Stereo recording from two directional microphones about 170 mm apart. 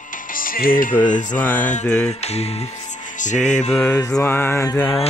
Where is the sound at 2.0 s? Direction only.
40° left (ahead or behind).